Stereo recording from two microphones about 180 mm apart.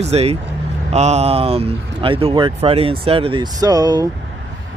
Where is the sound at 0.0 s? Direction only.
35° right (ahead or behind).